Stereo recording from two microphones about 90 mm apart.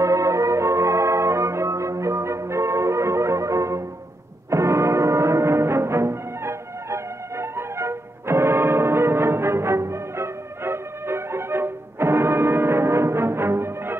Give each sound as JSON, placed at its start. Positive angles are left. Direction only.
{"t": 0.0, "sound": "music", "side_deg": -35}